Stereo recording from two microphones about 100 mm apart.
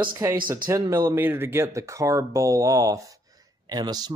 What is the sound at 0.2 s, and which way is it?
Speech, 25° right (ahead or behind).